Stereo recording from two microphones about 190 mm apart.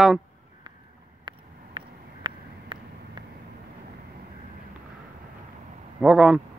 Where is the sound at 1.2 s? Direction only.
25° right (ahead or behind).